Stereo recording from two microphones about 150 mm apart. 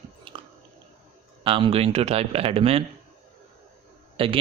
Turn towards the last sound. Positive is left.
turn(degrees=-35)  # may be behind; listen again after turning